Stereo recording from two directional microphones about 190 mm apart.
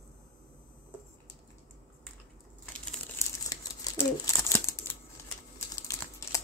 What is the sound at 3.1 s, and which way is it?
Crumpling, 20° left (ahead or behind).